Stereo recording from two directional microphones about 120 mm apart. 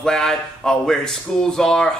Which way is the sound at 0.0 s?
5° left (ahead or behind).